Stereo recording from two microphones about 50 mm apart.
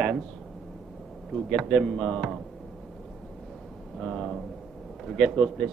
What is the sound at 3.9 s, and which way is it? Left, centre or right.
A man's voice, centre.